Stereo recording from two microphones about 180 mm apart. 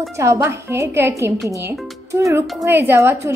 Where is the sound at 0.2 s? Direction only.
15° right (ahead or behind).